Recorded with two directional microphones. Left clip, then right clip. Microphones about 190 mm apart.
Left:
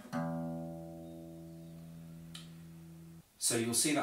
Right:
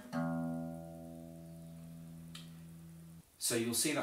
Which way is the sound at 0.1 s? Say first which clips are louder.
Even; 15° left (ahead or behind).